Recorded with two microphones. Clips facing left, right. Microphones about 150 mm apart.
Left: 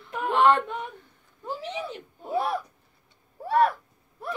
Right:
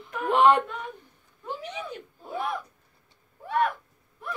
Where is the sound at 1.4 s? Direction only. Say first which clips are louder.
Left 2 dB; 35° left (ahead or behind).